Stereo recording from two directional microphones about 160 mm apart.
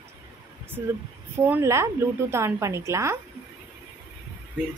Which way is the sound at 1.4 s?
15° right (ahead or behind).